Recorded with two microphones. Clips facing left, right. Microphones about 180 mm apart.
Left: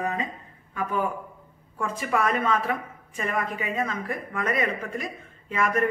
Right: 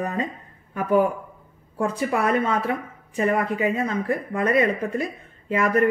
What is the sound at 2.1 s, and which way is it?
A woman's voice, 35° right (ahead or behind).